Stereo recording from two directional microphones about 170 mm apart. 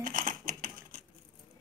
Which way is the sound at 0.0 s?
50° right (ahead or behind).